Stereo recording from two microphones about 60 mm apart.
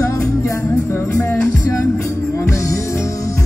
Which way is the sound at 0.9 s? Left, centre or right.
Left.